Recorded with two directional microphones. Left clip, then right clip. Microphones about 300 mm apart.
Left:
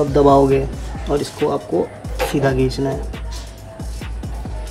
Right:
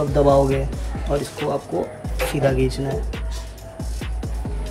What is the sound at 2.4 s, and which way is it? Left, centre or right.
Speech, centre.